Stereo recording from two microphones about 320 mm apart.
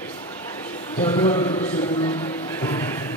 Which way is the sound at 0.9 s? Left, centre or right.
Centre.